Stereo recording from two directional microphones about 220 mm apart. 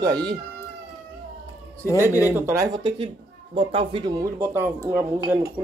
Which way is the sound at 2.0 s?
10° right (ahead or behind).